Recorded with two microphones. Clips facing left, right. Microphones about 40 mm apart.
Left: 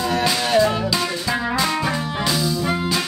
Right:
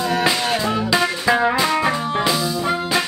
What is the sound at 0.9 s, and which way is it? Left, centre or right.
Music, right.